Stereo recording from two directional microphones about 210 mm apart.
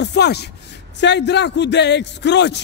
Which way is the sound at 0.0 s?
55° left (ahead or behind).